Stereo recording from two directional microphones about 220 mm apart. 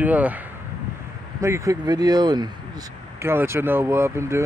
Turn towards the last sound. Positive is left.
turn(degrees=-10)  # may be behind; listen again after turning